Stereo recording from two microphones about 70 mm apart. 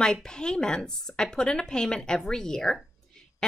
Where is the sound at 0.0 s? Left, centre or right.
Centre.